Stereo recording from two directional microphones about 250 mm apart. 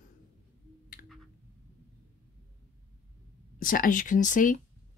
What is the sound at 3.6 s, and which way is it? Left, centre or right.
Speech, left.